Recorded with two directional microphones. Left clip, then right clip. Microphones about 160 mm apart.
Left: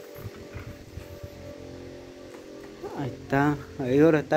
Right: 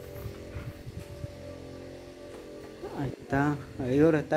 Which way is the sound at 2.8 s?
15° right (ahead or behind).